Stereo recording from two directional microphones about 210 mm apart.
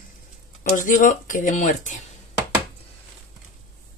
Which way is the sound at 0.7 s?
40° left (ahead or behind).